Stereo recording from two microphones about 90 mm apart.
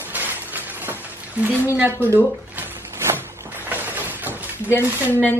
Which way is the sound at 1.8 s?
25° right (ahead or behind).